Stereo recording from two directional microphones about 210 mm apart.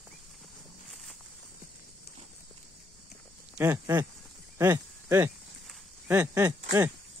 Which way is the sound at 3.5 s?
10° right (ahead or behind).